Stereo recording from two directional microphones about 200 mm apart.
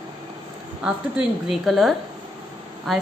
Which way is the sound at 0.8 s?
5° right (ahead or behind).